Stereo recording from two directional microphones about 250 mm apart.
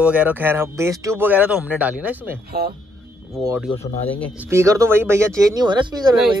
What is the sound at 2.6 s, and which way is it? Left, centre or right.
Speech, right.